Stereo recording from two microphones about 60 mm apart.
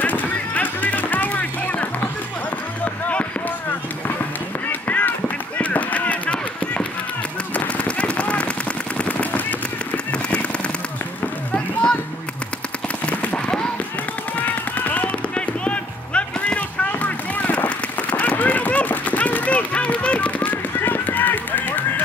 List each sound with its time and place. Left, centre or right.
0.0 s music: left
2.8 s a sound: left
4.8 s run: left
5.6 s a sound: left
7.5 s machine gun: left
10.1 s a sound: centre
11.5 s children playing: centre
13.0 s horse: left
14.4 s music: left
20.8 s run: left